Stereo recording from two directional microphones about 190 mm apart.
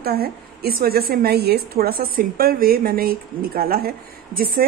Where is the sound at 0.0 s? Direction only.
55° right (ahead or behind).